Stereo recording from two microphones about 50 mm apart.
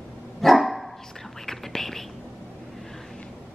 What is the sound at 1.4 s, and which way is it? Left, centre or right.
Whispering, centre.